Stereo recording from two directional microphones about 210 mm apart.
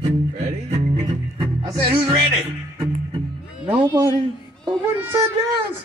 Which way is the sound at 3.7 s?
15° right (ahead or behind).